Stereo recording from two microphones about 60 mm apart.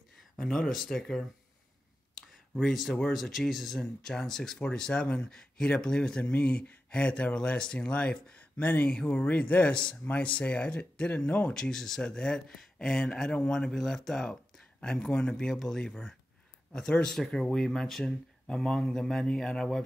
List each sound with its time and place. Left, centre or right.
0.4 s speech: centre
2.1 s a sound: centre
3.1 s speech: centre; by 11.5 s left
11.5 s speech: centre